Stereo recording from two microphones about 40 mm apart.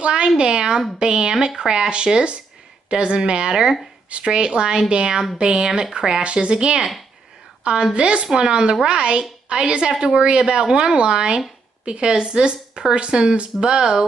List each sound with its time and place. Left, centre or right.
0.0 s a woman's voice: right
6.2 s speech: right
7.9 s speech: right